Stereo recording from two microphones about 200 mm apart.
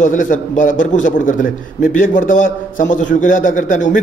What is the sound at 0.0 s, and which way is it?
A man's voice, 40° left (ahead or behind).